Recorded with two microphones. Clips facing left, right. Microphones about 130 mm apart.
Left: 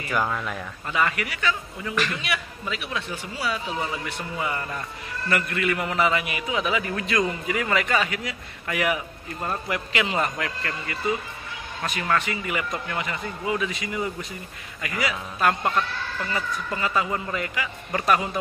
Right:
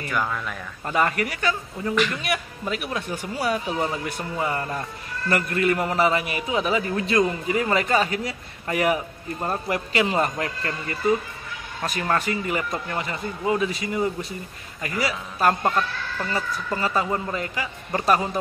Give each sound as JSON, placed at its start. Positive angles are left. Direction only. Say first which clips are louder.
{"t": 0.1, "sound": "speech", "louder": "left 2 dB", "side_deg": 5}
{"t": 0.8, "sound": "a man's voice", "louder": "right 3 dB", "side_deg": -40}
{"t": 2.0, "sound": "speech", "louder": "right 3 dB", "side_deg": 0}
{"t": 2.2, "sound": "a man's voice", "louder": "right 3 dB", "side_deg": -45}